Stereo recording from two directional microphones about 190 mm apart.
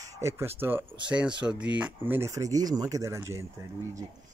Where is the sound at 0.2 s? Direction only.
15° right (ahead or behind).